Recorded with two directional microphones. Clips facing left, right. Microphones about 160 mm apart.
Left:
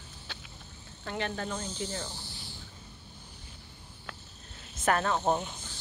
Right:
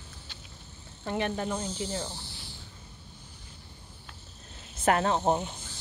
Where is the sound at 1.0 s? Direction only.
15° right (ahead or behind).